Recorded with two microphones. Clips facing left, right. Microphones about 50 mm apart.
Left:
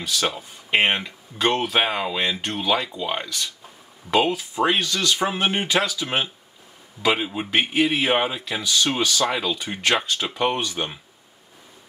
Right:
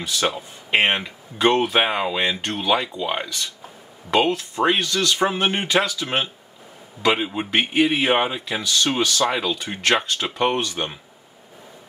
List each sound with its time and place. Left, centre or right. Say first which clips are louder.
0.3 s speech: right 1 dB; centre
4.1 s speech: right 1 dB; centre
8.6 s speech: right 1 dB; centre
9.2 s speech: right 2 dB; centre